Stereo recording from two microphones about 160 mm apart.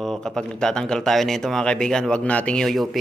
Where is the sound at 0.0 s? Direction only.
5° left (ahead or behind).